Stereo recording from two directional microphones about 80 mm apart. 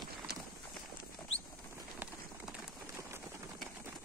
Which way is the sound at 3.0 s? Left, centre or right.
Right.